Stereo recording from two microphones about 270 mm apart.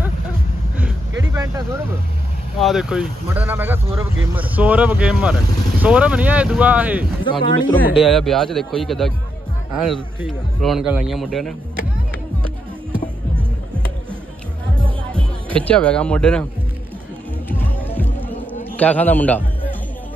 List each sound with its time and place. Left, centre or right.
1.3 s vehicle: centre
2.6 s speech: centre
7.2 s speech: centre
7.7 s speech: centre
14.8 s music: centre
15.6 s speech: centre
17.5 s music: centre
18.8 s a man's voice: centre